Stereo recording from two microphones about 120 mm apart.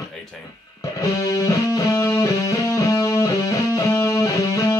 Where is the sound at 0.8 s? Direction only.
25° left (ahead or behind).